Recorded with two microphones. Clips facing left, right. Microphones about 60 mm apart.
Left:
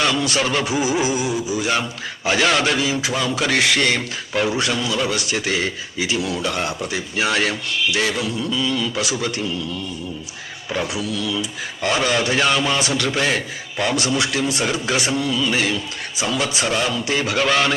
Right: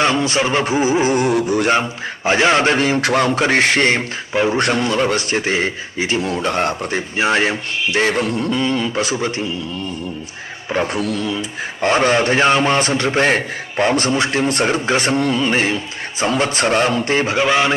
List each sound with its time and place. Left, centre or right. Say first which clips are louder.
0.0 s speech: right 3 dB; right
1.1 s music: right 6 dB; right
1.7 s speech: right 5 dB; right
3.3 s speech: right 4 dB; right
4.3 s speech: right 4 dB; right
4.6 s speech: right 5 dB; right
10.7 s speech: right 5 dB; right
11.0 s speech: right 3 dB; right
17.4 s a sound: right 1 dB; right